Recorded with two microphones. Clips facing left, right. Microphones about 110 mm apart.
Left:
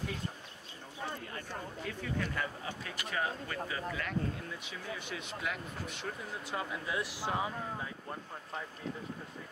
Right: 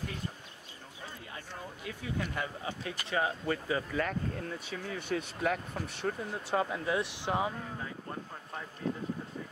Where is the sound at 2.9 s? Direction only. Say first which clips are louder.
Right 3 dB; 30° right (ahead or behind).